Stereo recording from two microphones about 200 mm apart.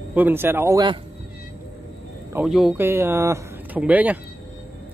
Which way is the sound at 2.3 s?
5° right (ahead or behind).